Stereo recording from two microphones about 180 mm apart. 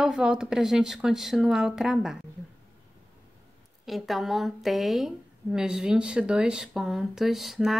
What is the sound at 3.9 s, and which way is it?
A woman's voice, centre (ahead or behind).